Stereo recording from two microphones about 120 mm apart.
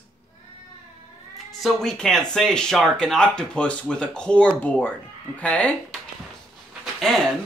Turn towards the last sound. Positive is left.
turn(degrees=5)  # may be behind; listen again after turning